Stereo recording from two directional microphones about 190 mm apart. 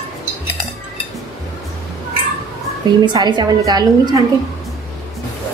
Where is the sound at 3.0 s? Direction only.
20° right (ahead or behind).